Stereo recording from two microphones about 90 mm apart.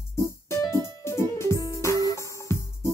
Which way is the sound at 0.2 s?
35° left (ahead or behind).